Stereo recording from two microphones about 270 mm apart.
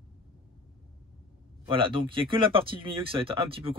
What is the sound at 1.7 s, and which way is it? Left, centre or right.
Speech, centre.